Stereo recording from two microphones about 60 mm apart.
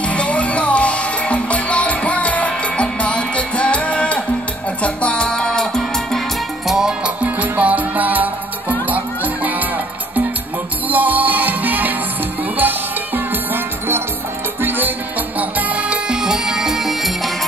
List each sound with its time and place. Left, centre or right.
0.1 s music: left
6.7 s music: centre
7.2 s music: right
10.9 s music: right
15.3 s music: right; by 17.3 s centre